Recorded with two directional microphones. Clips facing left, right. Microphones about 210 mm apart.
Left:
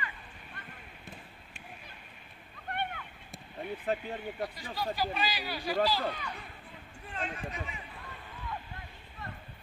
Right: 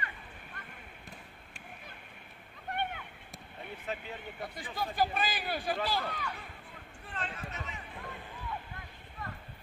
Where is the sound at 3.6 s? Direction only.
50° left (ahead or behind).